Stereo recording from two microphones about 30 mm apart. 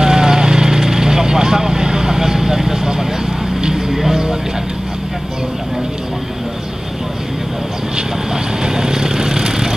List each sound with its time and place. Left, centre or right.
0.0 s vehicle: centre
3.6 s music: centre
8.6 s vehicle: right